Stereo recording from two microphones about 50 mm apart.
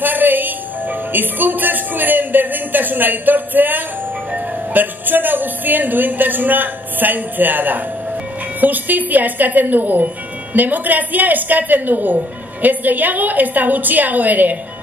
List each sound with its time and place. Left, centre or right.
0.0 s speech: right